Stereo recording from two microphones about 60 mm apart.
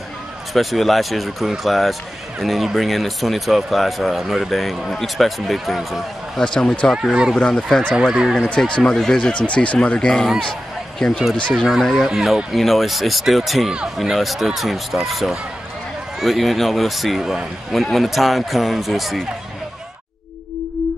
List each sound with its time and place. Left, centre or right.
0.5 s a man's voice: centre
6.4 s speech: centre
7.9 s speech: centre
8.4 s speech: centre
11.8 s a man's voice: centre
12.5 s a man's voice: centre